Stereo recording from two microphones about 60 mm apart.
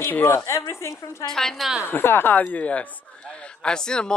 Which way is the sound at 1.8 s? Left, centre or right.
Left.